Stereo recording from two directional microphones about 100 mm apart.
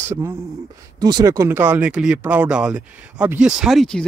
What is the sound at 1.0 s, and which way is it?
Speech, 40° right (ahead or behind).